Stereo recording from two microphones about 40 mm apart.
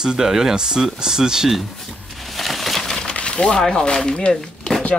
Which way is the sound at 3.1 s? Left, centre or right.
Left.